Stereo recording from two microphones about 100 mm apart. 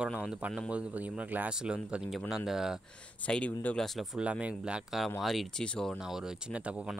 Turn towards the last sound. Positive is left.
turn(degrees=-10)  # may be behind; listen again after turning